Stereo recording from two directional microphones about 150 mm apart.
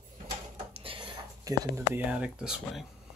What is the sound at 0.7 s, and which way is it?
Whispering, 35° right (ahead or behind).